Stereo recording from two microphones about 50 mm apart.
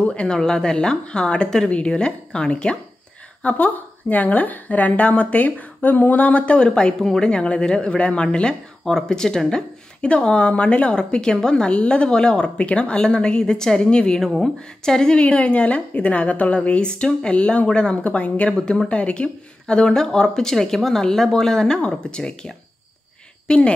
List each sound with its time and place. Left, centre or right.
0.0 s a woman's voice: left
3.4 s a woman's voice: left
7.0 s speech: centre
7.2 s a woman's voice: left
15.2 s a woman's voice: left